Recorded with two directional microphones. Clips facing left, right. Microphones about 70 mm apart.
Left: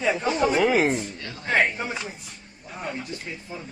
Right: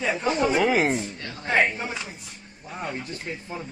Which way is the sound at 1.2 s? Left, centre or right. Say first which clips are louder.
Even; right.